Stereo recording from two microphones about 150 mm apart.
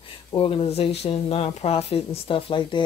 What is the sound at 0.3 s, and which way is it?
Speech, 35° left (ahead or behind).